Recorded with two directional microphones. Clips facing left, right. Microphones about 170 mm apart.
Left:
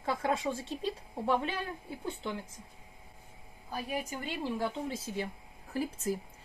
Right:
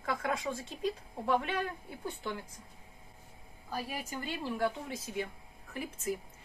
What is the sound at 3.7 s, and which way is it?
A woman's voice, 20° left (ahead or behind).